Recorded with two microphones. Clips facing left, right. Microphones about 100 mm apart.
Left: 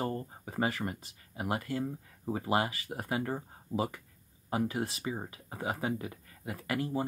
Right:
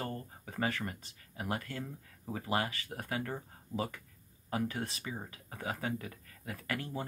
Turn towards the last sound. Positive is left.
turn(degrees=25)  # may be behind; listen again after turning